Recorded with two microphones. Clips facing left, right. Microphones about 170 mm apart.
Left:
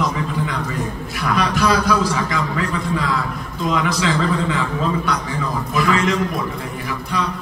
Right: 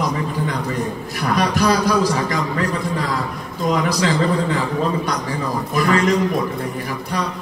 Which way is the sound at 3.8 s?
40° right (ahead or behind).